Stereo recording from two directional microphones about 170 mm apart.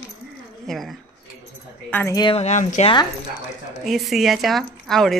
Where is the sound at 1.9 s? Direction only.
10° left (ahead or behind).